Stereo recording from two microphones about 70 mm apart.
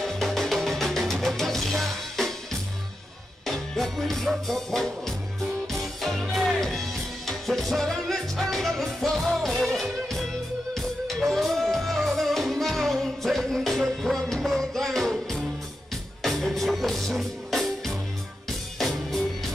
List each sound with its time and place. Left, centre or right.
0.0 s music: centre
3.4 s music: centre